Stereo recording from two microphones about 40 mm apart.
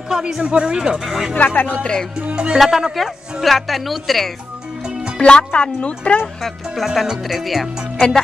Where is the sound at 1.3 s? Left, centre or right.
Left.